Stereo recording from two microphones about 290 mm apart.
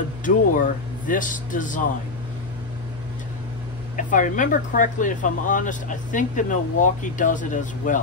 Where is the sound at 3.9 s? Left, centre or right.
Left.